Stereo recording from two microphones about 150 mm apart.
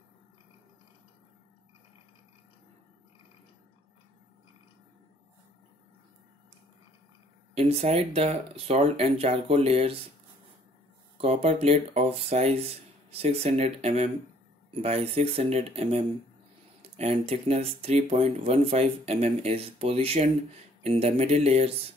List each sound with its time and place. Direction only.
7.5 s speech: 45° right (ahead or behind)
11.1 s speech: 45° right (ahead or behind)